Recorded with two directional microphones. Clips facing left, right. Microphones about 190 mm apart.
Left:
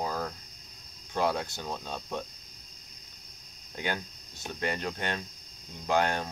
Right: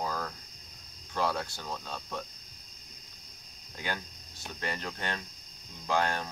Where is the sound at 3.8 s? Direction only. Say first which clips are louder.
Left 3 dB; 20° left (ahead or behind).